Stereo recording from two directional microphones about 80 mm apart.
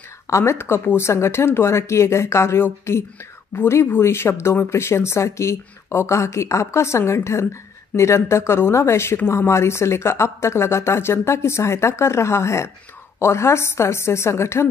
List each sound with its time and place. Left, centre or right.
0.3 s speech: left